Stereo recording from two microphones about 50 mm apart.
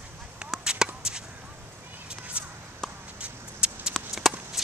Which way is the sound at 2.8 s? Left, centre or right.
Centre.